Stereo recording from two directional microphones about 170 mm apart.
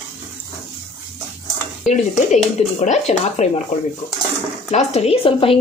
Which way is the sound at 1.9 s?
45° left (ahead or behind).